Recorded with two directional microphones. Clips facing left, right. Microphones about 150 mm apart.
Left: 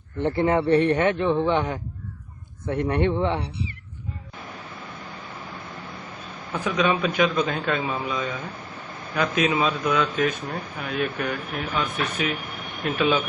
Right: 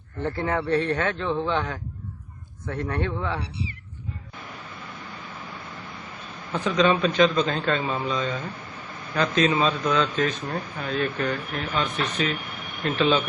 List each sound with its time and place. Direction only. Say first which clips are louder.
0.2 s a man's voice: left 5 dB; 20° left (ahead or behind)
6.7 s a man's voice: right 2 dB; 10° left (ahead or behind)